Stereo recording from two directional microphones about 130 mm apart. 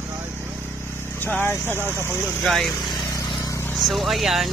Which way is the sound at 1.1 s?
15° left (ahead or behind).